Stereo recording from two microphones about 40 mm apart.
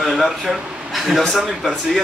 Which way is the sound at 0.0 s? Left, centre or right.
Centre.